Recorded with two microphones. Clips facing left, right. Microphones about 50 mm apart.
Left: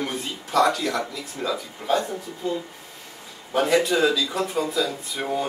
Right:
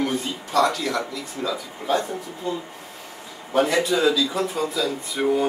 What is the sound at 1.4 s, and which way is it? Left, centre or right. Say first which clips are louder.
Speech: even; centre.